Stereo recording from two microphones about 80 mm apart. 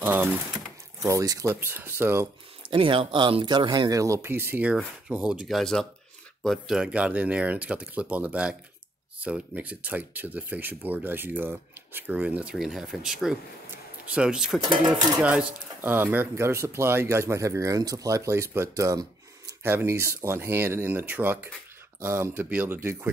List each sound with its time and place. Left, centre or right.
0.0 s speech: right
1.0 s speech: right
1.5 s speech: right
2.7 s speech: right
3.9 s speech: right
4.3 s speech: right
4.6 s speech: centre
5.5 s speech: centre
6.8 s speech: centre
12.5 s speech: centre
14.6 s speech: right
15.2 s speech: centre
15.9 s speech: right
19.6 s speech: right